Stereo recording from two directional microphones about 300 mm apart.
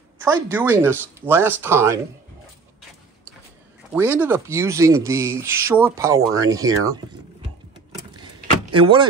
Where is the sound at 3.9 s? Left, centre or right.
Centre.